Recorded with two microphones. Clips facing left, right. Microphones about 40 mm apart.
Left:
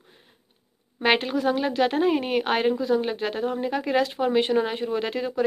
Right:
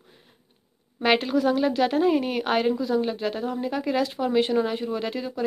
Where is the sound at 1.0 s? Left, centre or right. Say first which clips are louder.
Right 1 dB; left.